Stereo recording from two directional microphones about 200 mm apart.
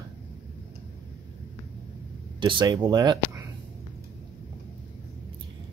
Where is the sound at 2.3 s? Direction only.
25° right (ahead or behind).